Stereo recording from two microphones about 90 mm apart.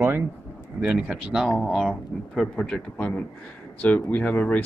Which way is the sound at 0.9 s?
10° right (ahead or behind).